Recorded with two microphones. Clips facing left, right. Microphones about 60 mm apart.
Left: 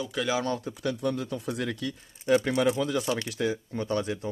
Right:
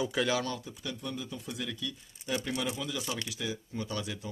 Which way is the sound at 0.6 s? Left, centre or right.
Left.